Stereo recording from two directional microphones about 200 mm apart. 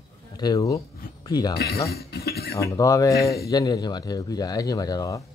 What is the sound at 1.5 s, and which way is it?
Speech, 50° left (ahead or behind).